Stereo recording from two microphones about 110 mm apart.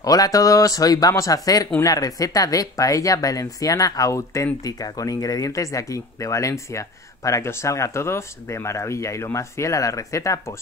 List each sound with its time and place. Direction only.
0.0 s speech: 35° left (ahead or behind)